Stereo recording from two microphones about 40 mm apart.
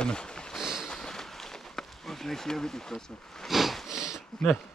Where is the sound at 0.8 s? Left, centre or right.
Centre.